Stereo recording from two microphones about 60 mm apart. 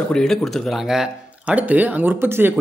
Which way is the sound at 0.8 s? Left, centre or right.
Centre.